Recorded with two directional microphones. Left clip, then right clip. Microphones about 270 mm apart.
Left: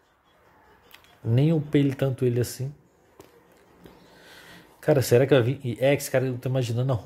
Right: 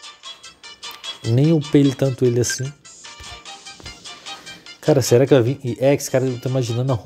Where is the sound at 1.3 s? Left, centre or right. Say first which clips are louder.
Right 7 dB; centre.